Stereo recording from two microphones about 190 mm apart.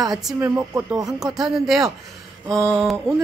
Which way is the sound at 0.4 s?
10° right (ahead or behind).